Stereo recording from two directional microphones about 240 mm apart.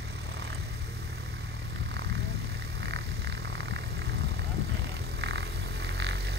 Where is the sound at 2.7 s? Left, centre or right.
Right.